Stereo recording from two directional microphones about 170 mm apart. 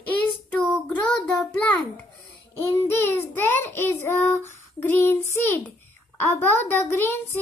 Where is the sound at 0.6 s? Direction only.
5° left (ahead or behind).